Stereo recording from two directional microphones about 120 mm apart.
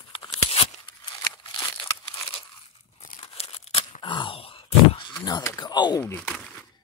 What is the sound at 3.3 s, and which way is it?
Tearing, 55° left (ahead or behind).